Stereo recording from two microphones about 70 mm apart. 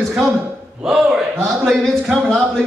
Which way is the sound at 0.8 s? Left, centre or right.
Centre.